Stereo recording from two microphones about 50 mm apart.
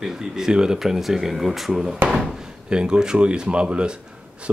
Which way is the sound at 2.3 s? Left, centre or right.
Centre.